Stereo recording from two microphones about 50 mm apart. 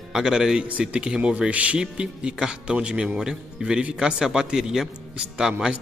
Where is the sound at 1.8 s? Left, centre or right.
Centre.